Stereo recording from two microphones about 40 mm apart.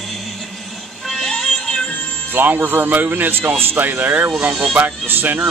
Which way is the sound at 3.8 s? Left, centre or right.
Right.